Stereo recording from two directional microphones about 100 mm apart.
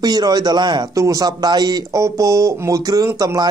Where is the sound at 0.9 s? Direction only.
35° right (ahead or behind).